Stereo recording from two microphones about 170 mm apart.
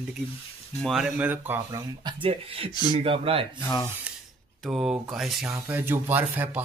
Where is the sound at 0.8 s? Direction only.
Centre (ahead or behind).